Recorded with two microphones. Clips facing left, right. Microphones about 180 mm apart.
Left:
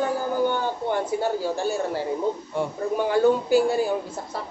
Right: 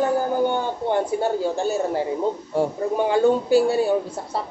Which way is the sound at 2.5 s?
40° right (ahead or behind).